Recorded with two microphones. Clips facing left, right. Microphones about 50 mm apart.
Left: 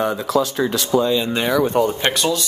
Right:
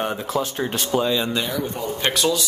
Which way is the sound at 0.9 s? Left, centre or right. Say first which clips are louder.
Left 4 dB; right.